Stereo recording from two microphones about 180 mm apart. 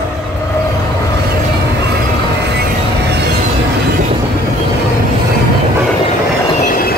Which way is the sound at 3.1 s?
65° right (ahead or behind).